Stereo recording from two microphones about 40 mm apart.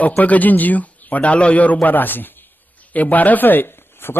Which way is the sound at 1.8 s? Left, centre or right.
Left.